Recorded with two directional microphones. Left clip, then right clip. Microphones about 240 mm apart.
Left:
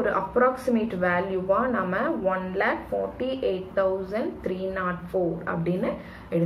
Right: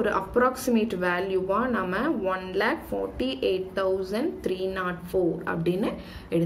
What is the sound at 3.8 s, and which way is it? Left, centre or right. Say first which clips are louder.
Speech: left 3 dB; right.